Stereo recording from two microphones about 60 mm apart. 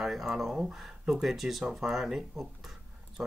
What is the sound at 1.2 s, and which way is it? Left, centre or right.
Speech, centre.